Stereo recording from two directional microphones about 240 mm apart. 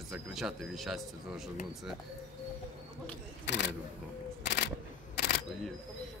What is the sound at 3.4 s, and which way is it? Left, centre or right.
Speech, left.